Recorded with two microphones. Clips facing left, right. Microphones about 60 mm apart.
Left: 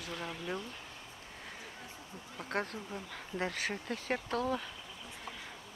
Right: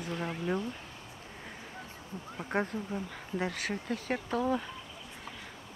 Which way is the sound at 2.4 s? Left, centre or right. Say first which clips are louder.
Right 4 dB; centre.